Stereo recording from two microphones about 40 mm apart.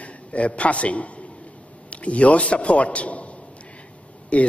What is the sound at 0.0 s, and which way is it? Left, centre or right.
A man's voice, left.